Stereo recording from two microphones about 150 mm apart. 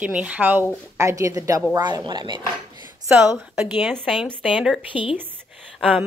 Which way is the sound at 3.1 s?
10° right (ahead or behind).